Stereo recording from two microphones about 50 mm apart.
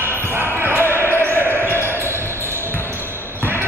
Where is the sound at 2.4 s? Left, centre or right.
Left.